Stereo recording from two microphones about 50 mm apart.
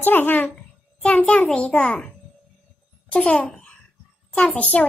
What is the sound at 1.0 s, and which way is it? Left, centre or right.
Speech, left.